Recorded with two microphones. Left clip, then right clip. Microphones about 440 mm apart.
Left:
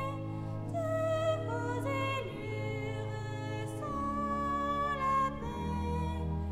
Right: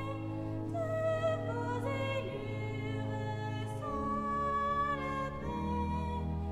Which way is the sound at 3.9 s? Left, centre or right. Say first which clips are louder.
Even; left.